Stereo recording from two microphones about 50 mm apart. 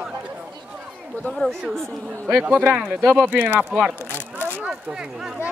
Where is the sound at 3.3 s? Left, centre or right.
Right.